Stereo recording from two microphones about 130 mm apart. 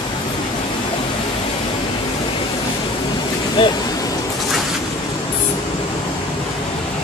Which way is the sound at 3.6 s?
40° left (ahead or behind).